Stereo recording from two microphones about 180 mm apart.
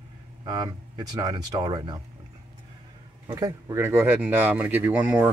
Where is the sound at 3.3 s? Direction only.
20° right (ahead or behind).